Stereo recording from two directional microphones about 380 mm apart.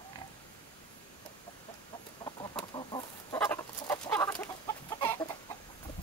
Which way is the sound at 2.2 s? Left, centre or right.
Centre.